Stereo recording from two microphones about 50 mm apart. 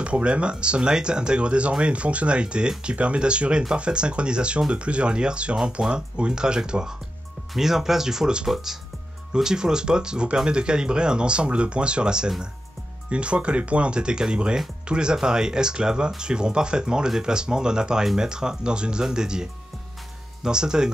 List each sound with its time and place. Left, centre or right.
0.0 s speech: right
8.5 s speech: centre